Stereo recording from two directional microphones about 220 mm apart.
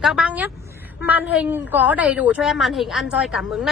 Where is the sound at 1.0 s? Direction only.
10° right (ahead or behind).